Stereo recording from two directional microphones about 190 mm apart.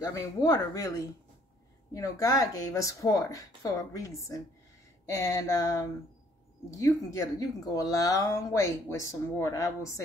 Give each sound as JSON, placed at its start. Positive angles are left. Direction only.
{"t": 0.0, "sound": "speech", "side_deg": 20}